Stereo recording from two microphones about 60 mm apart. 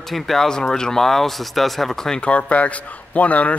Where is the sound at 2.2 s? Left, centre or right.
Left.